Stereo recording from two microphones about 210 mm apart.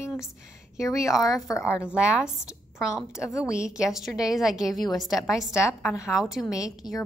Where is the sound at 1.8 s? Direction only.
5° right (ahead or behind).